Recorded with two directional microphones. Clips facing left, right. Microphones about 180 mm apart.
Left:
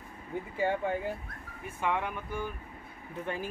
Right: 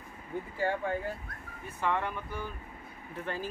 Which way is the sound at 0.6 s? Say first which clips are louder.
Left 2 dB; 15° left (ahead or behind).